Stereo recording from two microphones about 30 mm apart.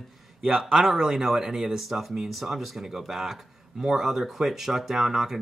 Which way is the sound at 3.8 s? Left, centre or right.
Centre.